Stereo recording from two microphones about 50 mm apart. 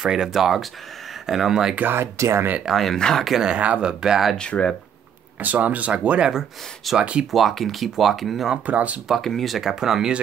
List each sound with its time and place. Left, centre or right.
0.0 s speech: centre
2.0 s speech: right
2.6 s speech: centre
3.0 s speech: centre
3.4 s speech: right
4.4 s speech: left
5.4 s speech: right
7.2 s speech: centre
8.6 s speech: right
9.2 s speech: centre